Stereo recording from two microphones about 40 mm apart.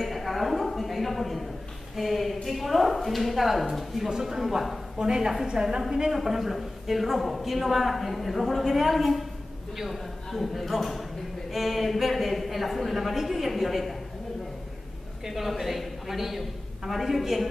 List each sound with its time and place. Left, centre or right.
0.0 s a sound: centre
2.0 s a woman's voice: centre
4.1 s speech: centre
4.9 s a woman's voice: centre
15.2 s a woman's voice: centre